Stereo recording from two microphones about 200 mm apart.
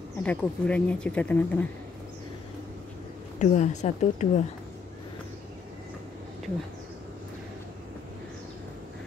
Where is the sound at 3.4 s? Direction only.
35° left (ahead or behind).